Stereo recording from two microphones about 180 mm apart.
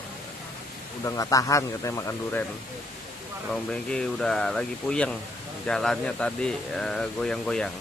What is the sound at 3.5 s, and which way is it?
Speech, 5° left (ahead or behind).